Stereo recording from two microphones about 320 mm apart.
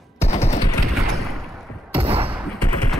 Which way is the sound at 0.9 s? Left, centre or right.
Centre.